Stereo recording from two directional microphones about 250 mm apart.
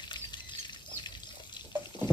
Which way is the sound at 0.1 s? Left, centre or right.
Centre.